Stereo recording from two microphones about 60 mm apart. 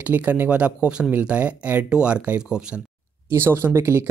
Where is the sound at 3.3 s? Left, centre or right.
Right.